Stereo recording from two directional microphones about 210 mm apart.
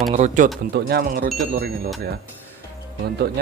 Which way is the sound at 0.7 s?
50° right (ahead or behind).